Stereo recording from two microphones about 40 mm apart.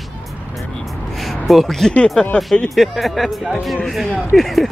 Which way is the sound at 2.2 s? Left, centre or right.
Left.